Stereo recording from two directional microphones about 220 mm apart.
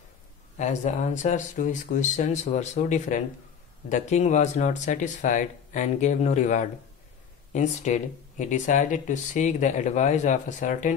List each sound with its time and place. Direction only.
0.6 s speech: 30° left (ahead or behind)